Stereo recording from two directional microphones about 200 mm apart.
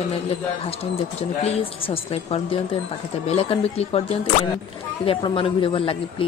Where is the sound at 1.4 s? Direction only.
30° left (ahead or behind).